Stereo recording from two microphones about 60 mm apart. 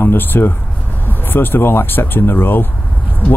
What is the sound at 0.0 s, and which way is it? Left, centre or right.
Speech, left.